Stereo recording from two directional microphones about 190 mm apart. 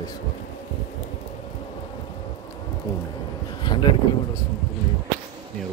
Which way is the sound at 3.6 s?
25° left (ahead or behind).